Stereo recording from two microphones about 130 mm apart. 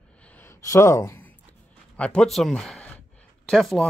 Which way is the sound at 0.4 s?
20° left (ahead or behind).